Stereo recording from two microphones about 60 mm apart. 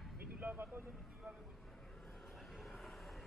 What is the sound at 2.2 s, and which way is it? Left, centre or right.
Vehicle, centre.